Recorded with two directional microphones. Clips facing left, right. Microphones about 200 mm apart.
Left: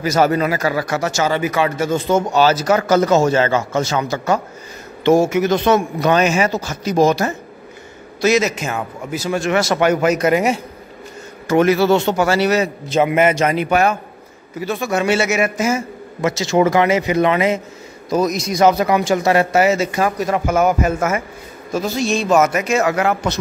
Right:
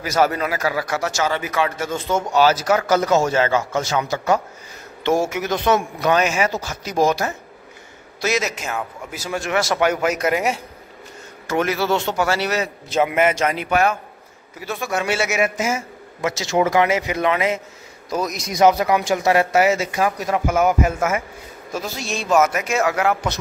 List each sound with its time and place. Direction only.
0.0 s a man's voice: 5° right (ahead or behind)
2.3 s a man's voice: 10° right (ahead or behind)
18.5 s a man's voice: 15° right (ahead or behind)